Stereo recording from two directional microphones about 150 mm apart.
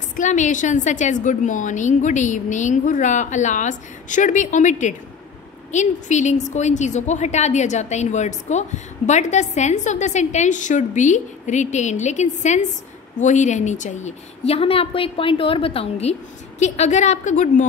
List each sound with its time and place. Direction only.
0.1 s a woman's voice: 55° left (ahead or behind)